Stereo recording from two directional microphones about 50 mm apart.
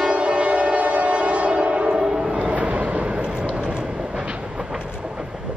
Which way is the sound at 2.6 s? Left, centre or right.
Right.